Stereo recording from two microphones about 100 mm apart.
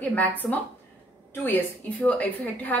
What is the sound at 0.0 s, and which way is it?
A woman's voice, 15° left (ahead or behind).